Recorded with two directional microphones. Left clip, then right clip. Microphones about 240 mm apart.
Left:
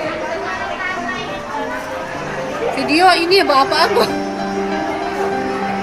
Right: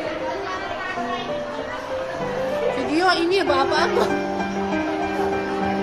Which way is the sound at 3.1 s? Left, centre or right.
Right.